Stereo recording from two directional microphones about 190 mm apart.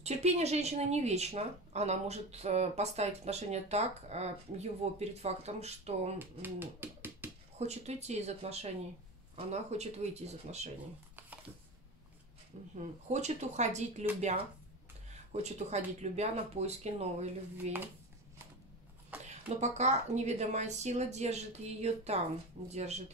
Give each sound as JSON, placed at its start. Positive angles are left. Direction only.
{"t": 0.0, "sound": "a woman's voice", "side_deg": -35}
{"t": 6.1, "sound": "speech", "side_deg": -10}
{"t": 7.5, "sound": "a woman's voice", "side_deg": -35}
{"t": 12.7, "sound": "a woman's voice", "side_deg": -35}
{"t": 15.3, "sound": "a woman's voice", "side_deg": -35}
{"t": 19.2, "sound": "a woman's voice", "side_deg": -35}